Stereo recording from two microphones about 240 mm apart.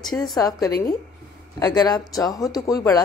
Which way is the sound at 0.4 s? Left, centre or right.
Centre.